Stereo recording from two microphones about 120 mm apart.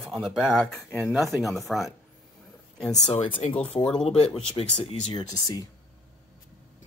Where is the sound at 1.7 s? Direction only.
Centre (ahead or behind).